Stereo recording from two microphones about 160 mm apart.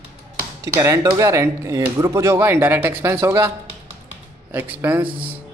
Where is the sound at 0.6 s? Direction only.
20° right (ahead or behind).